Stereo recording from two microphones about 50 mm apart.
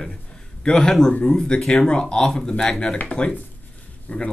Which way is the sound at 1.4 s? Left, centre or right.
Centre.